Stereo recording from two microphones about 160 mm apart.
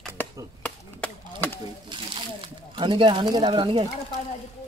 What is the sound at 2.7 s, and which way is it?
Speech, 30° right (ahead or behind).